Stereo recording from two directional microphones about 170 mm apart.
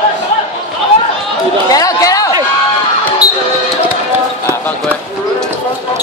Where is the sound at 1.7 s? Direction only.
20° left (ahead or behind).